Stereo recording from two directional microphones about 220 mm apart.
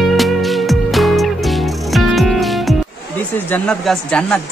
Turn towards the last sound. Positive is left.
turn(degrees=5)  # may be behind; listen again after turning